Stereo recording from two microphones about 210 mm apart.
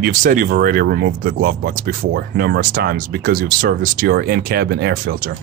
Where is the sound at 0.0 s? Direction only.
40° right (ahead or behind).